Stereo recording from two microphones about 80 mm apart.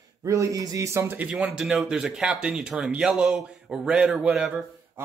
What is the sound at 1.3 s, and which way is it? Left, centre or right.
Speech, centre.